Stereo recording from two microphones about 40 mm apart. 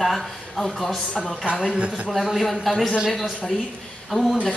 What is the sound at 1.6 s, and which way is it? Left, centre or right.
Speech, right.